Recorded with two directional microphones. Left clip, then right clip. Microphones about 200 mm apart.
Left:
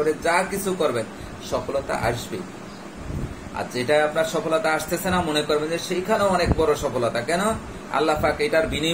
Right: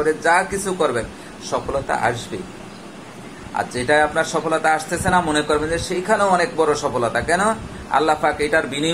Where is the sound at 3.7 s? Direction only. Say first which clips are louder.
Right 3 dB; 10° right (ahead or behind).